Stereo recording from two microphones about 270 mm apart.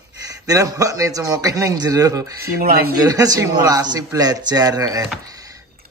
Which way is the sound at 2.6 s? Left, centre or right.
Right.